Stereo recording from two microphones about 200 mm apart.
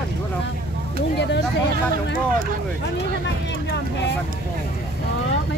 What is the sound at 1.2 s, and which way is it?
Speech, 60° left (ahead or behind).